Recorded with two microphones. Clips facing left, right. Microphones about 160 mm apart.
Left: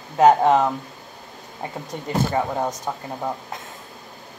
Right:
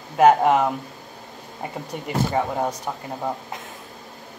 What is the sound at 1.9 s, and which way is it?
Speech, 15° right (ahead or behind).